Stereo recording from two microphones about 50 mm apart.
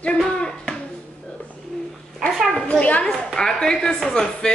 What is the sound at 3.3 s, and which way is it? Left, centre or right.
A woman's voice, centre.